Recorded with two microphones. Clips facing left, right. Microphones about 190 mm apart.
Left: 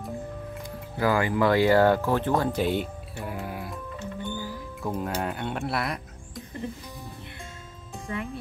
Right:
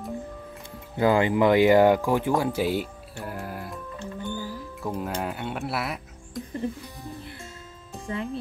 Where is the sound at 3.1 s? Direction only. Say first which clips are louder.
Even; centre (ahead or behind).